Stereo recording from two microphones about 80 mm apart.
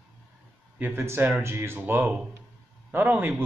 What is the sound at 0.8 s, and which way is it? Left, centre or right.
Speech, right.